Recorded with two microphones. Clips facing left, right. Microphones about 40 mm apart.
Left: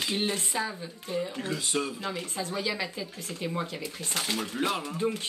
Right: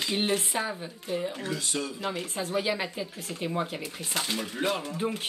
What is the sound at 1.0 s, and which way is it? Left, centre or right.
Speech, centre.